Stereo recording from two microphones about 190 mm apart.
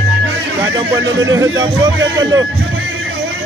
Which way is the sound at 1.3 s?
20° right (ahead or behind).